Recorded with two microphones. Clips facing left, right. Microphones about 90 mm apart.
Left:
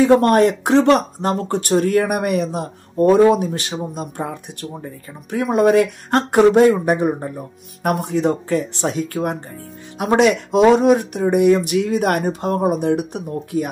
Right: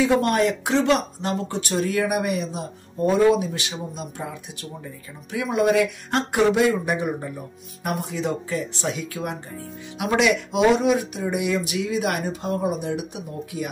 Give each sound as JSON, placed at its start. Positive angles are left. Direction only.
{"t": 0.0, "sound": "speech", "side_deg": 50}
{"t": 7.8, "sound": "speech", "side_deg": 60}